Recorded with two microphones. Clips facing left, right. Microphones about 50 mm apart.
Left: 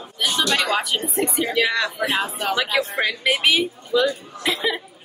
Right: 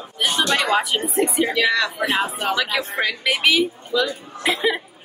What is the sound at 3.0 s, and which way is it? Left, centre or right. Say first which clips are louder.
Speech: right 3 dB; centre.